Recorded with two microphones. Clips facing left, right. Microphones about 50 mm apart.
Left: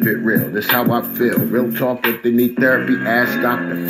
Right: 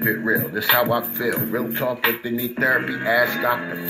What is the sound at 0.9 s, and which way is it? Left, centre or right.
Speech, left.